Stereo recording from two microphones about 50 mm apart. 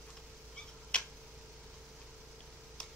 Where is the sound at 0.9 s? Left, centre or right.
Left.